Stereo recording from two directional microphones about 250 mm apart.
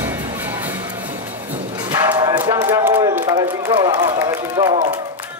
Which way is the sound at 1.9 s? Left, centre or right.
Centre.